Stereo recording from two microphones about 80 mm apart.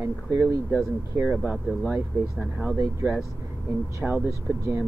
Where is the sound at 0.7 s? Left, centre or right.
Right.